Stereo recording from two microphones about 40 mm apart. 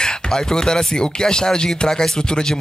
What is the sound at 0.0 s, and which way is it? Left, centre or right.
Speech, centre.